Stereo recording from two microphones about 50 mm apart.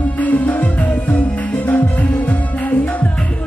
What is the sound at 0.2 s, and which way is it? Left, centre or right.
Music, left.